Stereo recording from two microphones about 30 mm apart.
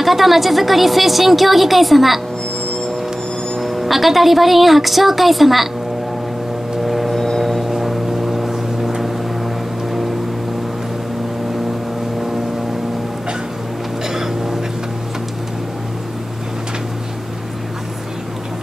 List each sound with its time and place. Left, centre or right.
0.0 s a woman's voice: centre
3.6 s a woman's voice: centre
6.9 s vehicle: centre
7.8 s vehicle: centre
14.0 s boat: centre